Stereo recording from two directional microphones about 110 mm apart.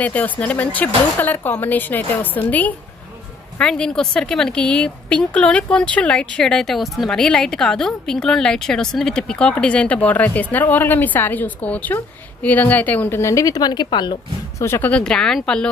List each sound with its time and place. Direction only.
0.0 s a woman's voice: 15° left (ahead or behind); by 14.1 s 45° left (ahead or behind)
14.6 s a woman's voice: 25° left (ahead or behind)
14.9 s speech: 10° left (ahead or behind)